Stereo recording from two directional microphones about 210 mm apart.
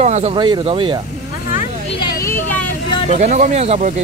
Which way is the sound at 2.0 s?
15° left (ahead or behind).